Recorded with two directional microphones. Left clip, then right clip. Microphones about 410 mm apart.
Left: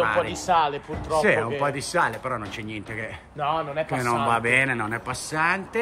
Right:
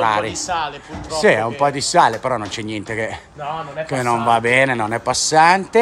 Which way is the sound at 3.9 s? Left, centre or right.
Centre.